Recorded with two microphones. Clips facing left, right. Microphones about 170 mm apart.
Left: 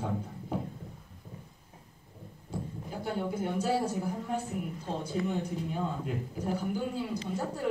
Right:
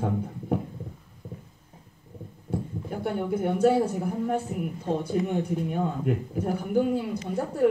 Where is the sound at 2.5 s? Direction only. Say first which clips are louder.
Right 7 dB; 60° right (ahead or behind).